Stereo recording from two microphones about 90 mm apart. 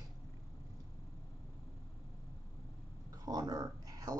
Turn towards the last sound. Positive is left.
turn(degrees=-45)  # may be behind; listen again after turning